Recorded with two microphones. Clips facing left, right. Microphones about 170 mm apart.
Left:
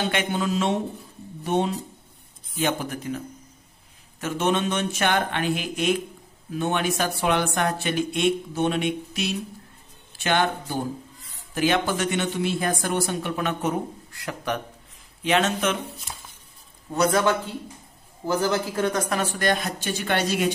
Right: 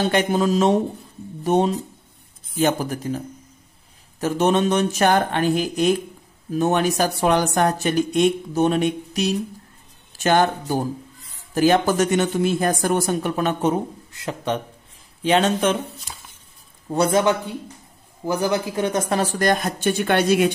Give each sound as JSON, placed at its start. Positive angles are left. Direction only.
{"t": 0.0, "sound": "speech", "side_deg": -40}
{"t": 4.2, "sound": "speech", "side_deg": -40}
{"t": 16.9, "sound": "a man's voice", "side_deg": -25}